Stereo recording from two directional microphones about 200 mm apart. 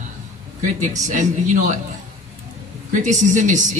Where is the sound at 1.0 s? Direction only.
40° right (ahead or behind).